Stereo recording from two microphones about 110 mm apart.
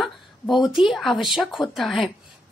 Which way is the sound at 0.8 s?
Centre (ahead or behind).